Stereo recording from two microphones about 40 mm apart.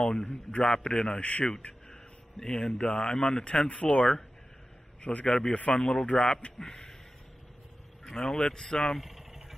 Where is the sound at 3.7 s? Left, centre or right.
Left.